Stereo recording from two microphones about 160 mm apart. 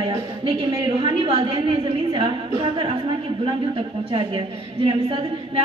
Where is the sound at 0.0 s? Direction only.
35° right (ahead or behind).